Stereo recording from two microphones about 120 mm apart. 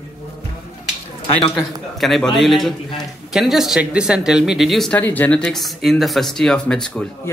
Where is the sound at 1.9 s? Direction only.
Centre (ahead or behind).